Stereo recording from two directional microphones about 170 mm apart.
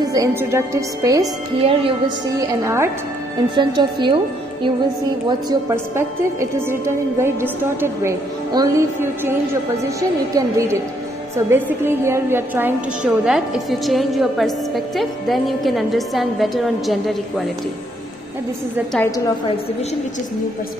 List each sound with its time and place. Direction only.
0.0 s a woman's voice: 20° right (ahead or behind)
1.6 s a woman's voice: 35° right (ahead or behind)
2.3 s a woman's voice: 15° right (ahead or behind)
3.5 s a woman's voice: 25° right (ahead or behind)
5.5 s a woman's voice: 20° right (ahead or behind); by 17.5 s centre (ahead or behind)